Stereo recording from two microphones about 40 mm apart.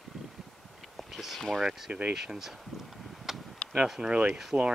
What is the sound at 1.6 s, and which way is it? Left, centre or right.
Speech, centre.